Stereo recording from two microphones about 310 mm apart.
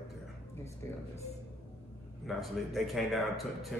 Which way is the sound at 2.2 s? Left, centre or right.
Centre.